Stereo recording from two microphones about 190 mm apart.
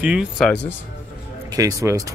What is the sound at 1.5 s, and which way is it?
Speech, 15° right (ahead or behind).